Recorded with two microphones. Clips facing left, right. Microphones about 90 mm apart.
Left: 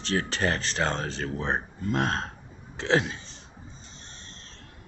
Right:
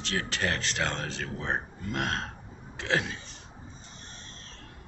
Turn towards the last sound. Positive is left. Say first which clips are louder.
# left 5 dB
turn(degrees=25)  # may be behind; listen again after turning